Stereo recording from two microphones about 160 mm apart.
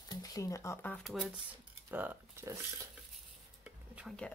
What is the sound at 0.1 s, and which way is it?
Speech, 20° left (ahead or behind).